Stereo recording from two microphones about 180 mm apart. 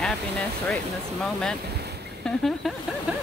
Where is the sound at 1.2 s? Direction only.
5° left (ahead or behind).